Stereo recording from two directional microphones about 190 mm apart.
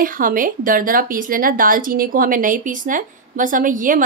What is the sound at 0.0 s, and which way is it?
A woman's voice, 45° right (ahead or behind).